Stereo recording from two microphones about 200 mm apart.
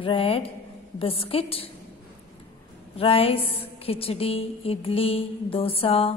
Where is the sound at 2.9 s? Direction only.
30° left (ahead or behind).